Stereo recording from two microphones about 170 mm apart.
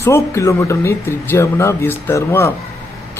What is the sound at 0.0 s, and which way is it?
Speech, 15° left (ahead or behind).